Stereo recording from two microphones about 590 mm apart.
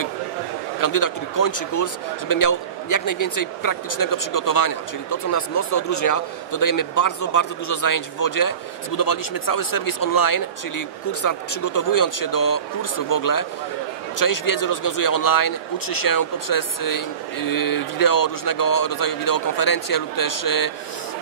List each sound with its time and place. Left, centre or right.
0.7 s speech: left